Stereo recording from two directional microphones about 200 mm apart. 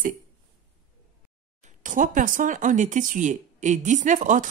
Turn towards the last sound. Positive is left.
turn(degrees=-40)  # may be behind; listen again after turning